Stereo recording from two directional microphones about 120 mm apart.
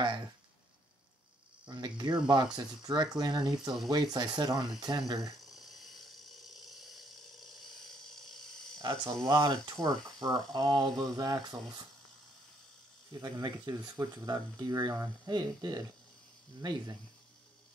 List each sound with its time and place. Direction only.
1.7 s speech: 35° right (ahead or behind)
5.6 s a sound: centre (ahead or behind)
8.7 s speech: 35° right (ahead or behind)
13.1 s speech: 35° right (ahead or behind)